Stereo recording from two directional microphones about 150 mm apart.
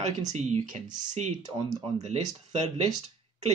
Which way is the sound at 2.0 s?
50° right (ahead or behind).